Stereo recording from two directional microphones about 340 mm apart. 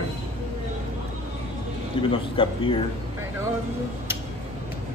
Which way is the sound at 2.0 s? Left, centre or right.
Centre.